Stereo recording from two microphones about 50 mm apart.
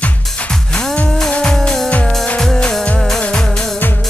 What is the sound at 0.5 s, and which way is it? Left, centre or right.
Music, centre.